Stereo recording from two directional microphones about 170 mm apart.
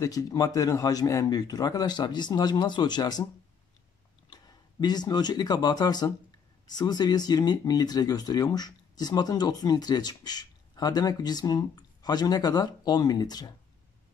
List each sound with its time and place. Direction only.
0.0 s speech: 20° left (ahead or behind)
4.3 s speech: 25° left (ahead or behind)